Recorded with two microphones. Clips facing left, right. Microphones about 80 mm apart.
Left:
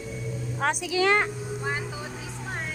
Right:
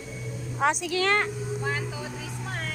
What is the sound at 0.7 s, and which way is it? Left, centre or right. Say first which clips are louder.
Speech: left 2 dB; centre.